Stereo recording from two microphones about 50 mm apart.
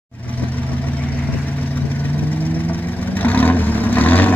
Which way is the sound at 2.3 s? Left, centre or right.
Left.